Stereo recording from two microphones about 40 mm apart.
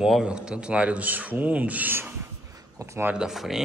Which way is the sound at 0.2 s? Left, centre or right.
Right.